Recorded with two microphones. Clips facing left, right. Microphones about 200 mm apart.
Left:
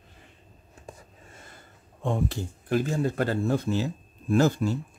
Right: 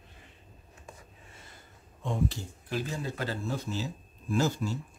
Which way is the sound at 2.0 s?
55° left (ahead or behind).